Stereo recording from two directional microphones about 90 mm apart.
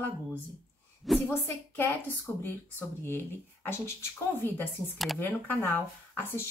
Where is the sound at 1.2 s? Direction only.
25° left (ahead or behind).